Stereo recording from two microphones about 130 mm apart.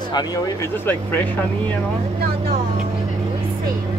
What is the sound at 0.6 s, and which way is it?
Speech, 15° left (ahead or behind).